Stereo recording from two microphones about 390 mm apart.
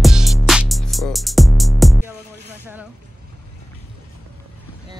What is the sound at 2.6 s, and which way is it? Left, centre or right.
Vehicle, centre.